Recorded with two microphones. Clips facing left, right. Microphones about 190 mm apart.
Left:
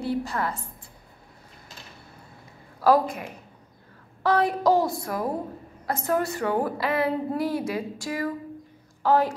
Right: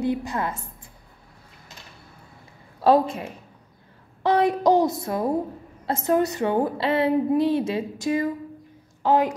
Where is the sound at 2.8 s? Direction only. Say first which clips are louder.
Right 2 dB; 25° right (ahead or behind).